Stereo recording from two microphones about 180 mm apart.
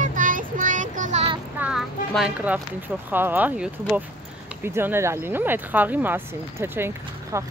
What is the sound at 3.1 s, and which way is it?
Speech, 10° right (ahead or behind).